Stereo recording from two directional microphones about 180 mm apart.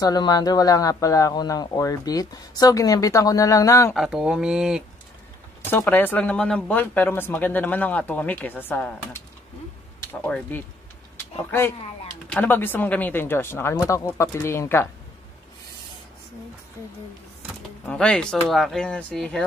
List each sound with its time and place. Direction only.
0.0 s speech: 20° left (ahead or behind)
3.9 s speech: centre (ahead or behind)
5.6 s speech: 15° left (ahead or behind)
12.3 s speech: 10° left (ahead or behind)
17.8 s speech: 5° left (ahead or behind)